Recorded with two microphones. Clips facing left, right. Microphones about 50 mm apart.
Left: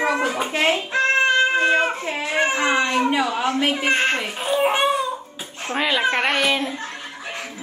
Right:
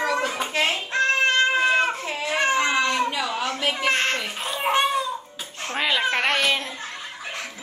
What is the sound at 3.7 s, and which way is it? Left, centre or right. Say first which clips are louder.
Speech: left 3 dB; centre.